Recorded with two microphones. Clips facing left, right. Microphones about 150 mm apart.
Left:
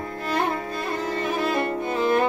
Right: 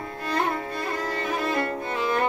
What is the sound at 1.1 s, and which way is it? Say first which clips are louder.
Violin: left 3 dB; 25° left (ahead or behind).